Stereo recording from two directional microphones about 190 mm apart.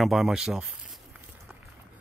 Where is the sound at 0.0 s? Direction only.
Centre (ahead or behind).